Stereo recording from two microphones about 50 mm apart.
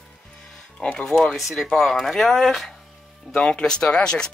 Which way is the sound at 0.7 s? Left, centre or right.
Centre.